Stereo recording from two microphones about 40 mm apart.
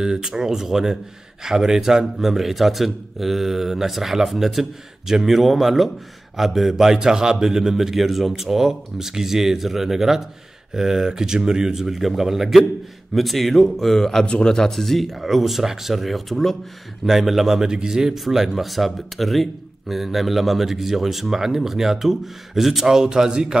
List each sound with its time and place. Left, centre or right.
0.0 s a man's voice: centre
11.7 s a man's voice: centre
14.2 s speech: left
14.6 s a man's voice: centre